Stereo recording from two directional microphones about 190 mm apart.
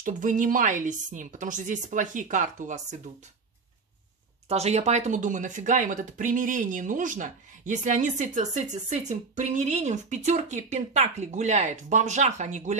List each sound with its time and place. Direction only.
0.0 s a woman's voice: 45° right (ahead or behind)
4.5 s speech: 35° right (ahead or behind)